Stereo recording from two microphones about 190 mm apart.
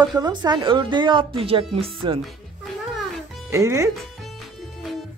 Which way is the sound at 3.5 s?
15° right (ahead or behind).